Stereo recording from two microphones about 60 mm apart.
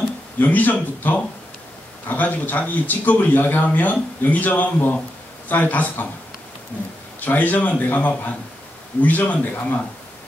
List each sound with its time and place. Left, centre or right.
0.4 s speech: left
7.2 s speech: left